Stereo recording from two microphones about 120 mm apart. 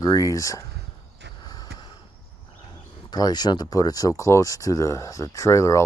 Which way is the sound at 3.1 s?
35° left (ahead or behind).